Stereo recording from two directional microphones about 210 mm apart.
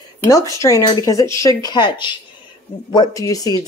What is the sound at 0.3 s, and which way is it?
Speech, 15° left (ahead or behind).